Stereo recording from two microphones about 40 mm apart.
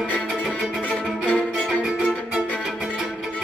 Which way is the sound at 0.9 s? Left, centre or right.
Left.